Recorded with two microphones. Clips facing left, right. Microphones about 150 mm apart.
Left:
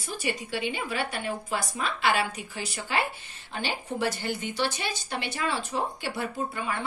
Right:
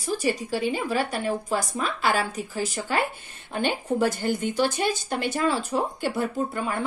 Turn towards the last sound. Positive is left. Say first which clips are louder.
# right 4 dB
turn(degrees=-45)  # may be behind; listen again after turning